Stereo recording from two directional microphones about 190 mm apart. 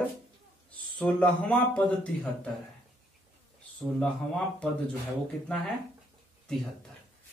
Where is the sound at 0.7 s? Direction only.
5° left (ahead or behind).